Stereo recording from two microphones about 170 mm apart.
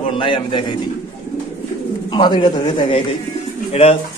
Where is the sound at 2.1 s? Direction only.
30° left (ahead or behind).